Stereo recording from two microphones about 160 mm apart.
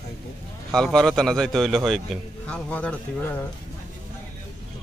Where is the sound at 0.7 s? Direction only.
5° left (ahead or behind).